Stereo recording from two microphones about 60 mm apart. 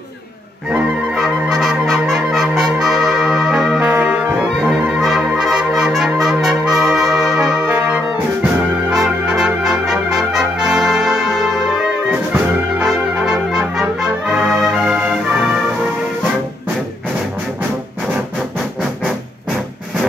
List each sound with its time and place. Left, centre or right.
1.1 s music: centre
3.8 s brass instrument: right
4.6 s music: centre
5.0 s brass instrument: centre
7.7 s music: right
9.2 s brass instrument: centre
12.1 s music: right
12.8 s brass instrument: centre
14.5 s music: centre
15.0 s music: right